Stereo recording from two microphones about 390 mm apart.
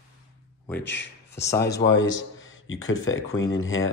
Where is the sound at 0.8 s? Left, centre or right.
Left.